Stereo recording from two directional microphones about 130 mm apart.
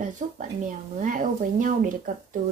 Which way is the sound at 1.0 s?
90° right.